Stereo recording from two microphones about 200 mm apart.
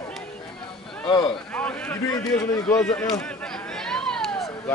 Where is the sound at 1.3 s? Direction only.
5° left (ahead or behind).